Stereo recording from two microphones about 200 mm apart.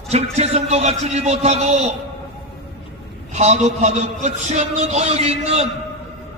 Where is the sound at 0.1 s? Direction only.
30° right (ahead or behind).